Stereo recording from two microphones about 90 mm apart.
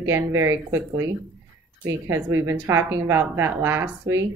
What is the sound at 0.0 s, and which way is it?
Speech, 30° right (ahead or behind).